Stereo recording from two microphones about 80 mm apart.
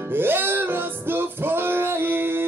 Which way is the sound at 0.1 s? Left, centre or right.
Right.